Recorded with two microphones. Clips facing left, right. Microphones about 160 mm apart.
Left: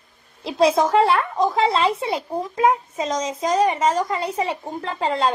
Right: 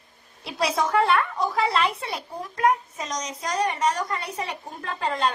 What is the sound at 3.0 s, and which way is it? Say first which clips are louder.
Speech: left 8 dB; 90° left.